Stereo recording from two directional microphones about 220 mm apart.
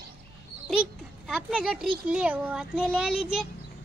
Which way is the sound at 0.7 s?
Centre (ahead or behind).